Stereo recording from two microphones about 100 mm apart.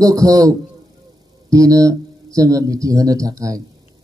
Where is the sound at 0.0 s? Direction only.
35° right (ahead or behind).